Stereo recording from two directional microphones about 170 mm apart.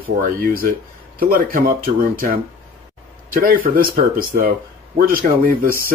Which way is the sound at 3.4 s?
60° right (ahead or behind).